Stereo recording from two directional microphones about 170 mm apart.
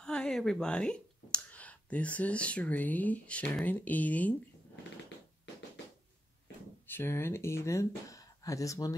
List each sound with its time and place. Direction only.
0.0 s speech: 5° left (ahead or behind)
6.9 s speech: 15° left (ahead or behind)